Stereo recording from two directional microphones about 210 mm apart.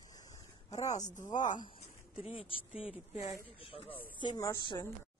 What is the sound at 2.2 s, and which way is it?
A woman's voice, 25° left (ahead or behind).